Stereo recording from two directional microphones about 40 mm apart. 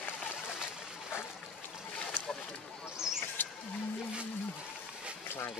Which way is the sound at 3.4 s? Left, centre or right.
Left.